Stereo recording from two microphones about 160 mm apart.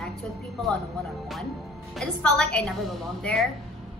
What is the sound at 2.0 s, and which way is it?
A woman's voice, 5° left (ahead or behind).